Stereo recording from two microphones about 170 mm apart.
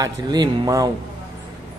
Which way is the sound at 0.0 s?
20° right (ahead or behind).